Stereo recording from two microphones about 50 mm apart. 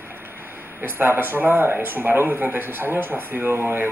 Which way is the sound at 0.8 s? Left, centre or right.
Right.